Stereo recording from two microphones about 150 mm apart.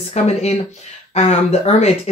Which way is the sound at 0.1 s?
45° left (ahead or behind).